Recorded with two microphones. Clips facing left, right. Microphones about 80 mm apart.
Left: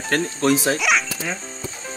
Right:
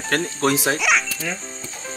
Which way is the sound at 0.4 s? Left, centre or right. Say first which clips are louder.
Left 2 dB; right.